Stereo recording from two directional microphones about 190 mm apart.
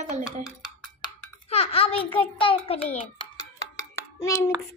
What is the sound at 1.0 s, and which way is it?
A child's voice, 30° left (ahead or behind).